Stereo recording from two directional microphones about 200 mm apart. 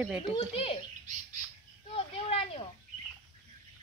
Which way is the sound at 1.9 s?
30° left (ahead or behind).